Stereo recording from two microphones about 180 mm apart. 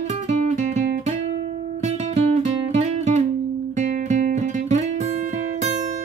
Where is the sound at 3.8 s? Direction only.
45° right (ahead or behind).